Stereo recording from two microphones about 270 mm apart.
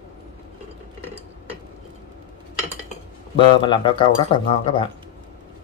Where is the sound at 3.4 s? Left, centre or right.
Centre.